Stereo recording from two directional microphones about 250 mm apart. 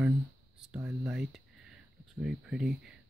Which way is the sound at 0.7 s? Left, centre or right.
Centre.